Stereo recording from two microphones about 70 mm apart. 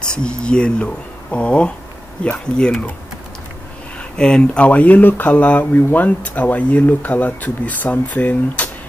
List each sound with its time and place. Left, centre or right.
0.0 s speech: centre
4.2 s speech: centre